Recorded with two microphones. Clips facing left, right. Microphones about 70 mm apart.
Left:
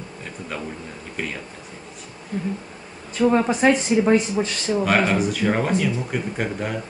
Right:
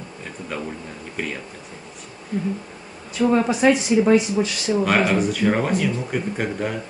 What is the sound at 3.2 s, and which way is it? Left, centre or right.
Speech, centre.